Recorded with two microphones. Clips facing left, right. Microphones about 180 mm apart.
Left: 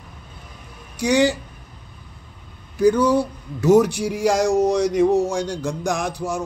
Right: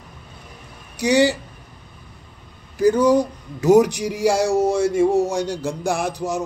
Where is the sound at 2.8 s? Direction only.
10° right (ahead or behind).